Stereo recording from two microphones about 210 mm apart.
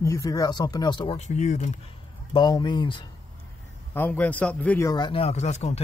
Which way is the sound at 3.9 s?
10° left (ahead or behind).